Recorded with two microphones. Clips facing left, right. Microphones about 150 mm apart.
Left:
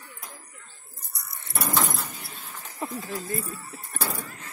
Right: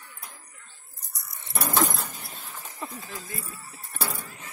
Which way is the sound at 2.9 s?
45° left (ahead or behind).